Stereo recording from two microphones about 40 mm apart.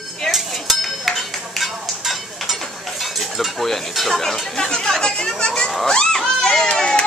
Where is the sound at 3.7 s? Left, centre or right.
Centre.